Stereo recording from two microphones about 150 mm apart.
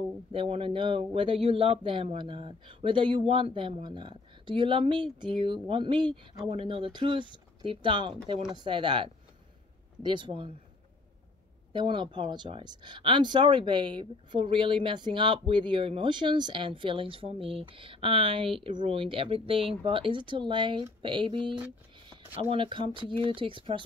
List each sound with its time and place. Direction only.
0.3 s speech: 35° right (ahead or behind)
11.7 s speech: 30° right (ahead or behind)